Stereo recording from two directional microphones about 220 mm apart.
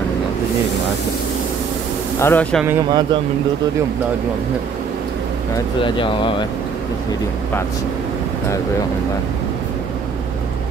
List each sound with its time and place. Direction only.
2.1 s speech: 10° left (ahead or behind)
2.6 s speech: 15° right (ahead or behind)
5.8 s speech: 20° left (ahead or behind)